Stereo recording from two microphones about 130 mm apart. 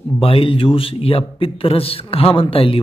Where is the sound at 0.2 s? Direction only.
45° left (ahead or behind).